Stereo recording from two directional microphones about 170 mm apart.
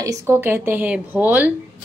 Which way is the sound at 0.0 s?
15° right (ahead or behind).